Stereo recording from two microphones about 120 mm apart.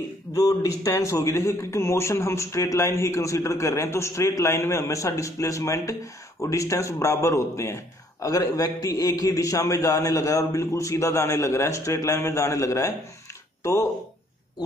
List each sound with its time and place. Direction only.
0.3 s a man's voice: 30° left (ahead or behind)